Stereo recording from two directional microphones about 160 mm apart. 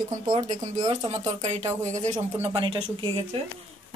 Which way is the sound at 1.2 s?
40° right (ahead or behind).